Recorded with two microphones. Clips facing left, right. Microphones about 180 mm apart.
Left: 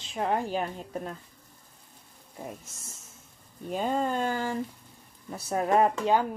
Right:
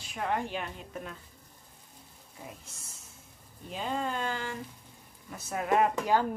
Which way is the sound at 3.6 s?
45° left (ahead or behind).